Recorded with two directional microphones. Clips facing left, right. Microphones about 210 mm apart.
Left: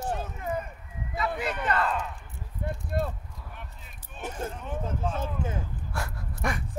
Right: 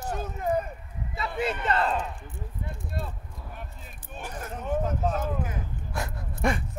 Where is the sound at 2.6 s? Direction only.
55° left (ahead or behind).